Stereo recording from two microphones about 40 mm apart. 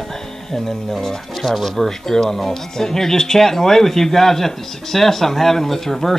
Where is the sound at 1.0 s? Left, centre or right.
Centre.